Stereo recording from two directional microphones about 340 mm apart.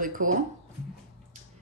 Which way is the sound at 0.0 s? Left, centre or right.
Right.